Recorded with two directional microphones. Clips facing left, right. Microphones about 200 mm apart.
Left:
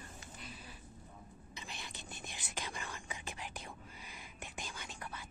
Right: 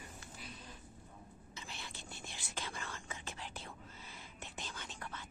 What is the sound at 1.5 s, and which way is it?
Whispering, 15° left (ahead or behind).